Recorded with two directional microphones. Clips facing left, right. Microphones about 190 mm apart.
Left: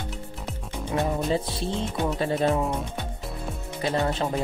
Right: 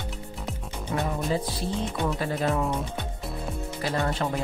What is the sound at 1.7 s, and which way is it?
Speech, centre (ahead or behind).